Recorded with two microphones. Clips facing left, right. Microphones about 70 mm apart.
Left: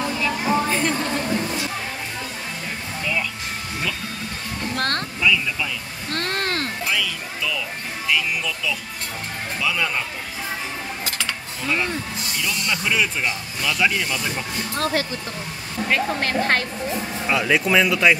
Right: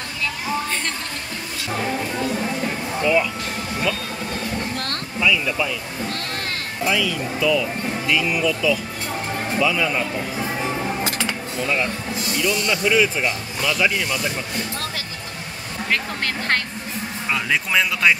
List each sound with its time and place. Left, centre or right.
4.7 s a sound: left
5.2 s speech: centre
6.1 s a sound: left
6.9 s speech: centre
11.6 s speech: centre
15.9 s speech: centre